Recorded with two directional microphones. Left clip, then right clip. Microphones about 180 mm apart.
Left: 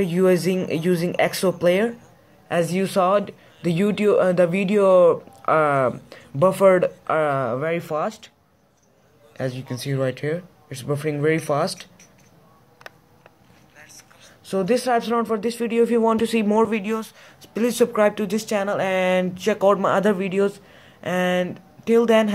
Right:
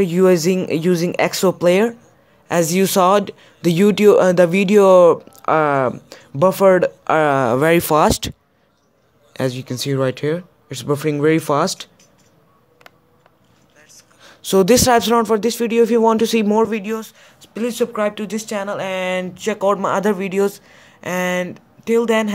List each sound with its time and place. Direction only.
0.0 s speech: 30° right (ahead or behind); by 8.3 s 65° right (ahead or behind)
9.3 s speech: 45° right (ahead or behind)
14.5 s speech: 50° right (ahead or behind); by 22.3 s 10° right (ahead or behind)